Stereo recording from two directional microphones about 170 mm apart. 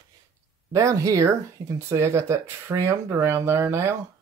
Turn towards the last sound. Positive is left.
turn(degrees=-15)  # may be behind; listen again after turning